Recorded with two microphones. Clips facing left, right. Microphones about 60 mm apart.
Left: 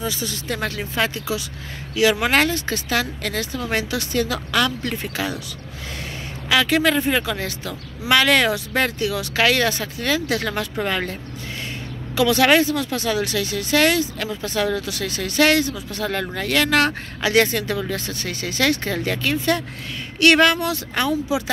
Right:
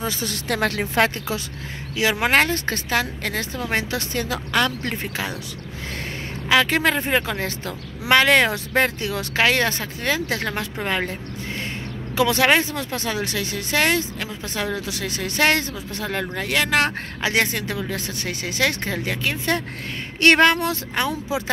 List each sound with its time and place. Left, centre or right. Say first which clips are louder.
0.0 s speech: even; right
2.0 s speech: left 1 dB; right
2.5 s speech: even; right
2.9 s speech: even; right
6.5 s speech: left 1 dB; right; by 11.1 s centre
12.2 s speech: left 2 dB; right
16.0 s speech: left 1 dB; centre